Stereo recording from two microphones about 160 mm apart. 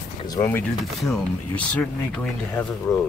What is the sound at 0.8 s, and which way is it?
Speech, centre (ahead or behind).